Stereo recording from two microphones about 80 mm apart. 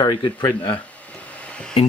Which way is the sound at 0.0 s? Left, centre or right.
Left.